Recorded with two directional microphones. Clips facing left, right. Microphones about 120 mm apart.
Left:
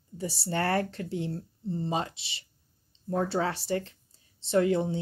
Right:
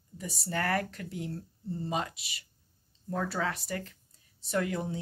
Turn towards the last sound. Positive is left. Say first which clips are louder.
# left 7 dB
turn(degrees=25)  # may be behind; listen again after turning